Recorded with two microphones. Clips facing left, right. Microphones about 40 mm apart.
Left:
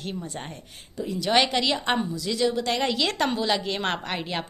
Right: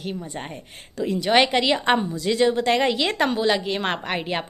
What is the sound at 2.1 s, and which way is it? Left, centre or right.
A woman's voice, right.